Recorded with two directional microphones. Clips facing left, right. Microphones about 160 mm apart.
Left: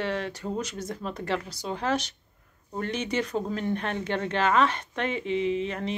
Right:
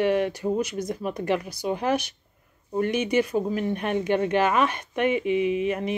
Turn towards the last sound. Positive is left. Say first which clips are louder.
# right 4 dB
turn(degrees=-15)  # may be behind; listen again after turning